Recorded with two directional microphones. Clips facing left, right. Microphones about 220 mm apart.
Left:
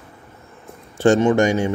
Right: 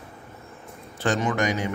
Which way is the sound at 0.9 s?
25° left (ahead or behind).